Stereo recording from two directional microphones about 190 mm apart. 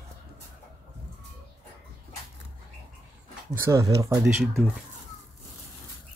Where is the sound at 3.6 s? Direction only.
15° right (ahead or behind).